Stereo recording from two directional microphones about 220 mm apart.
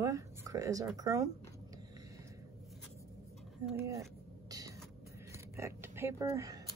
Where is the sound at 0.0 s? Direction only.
15° right (ahead or behind).